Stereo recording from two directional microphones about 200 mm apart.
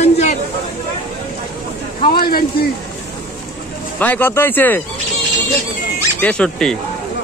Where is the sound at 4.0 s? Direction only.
10° left (ahead or behind).